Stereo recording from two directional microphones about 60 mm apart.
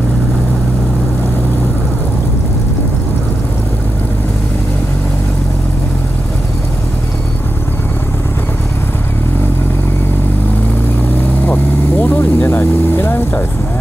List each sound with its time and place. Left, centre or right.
11.4 s vehicle: left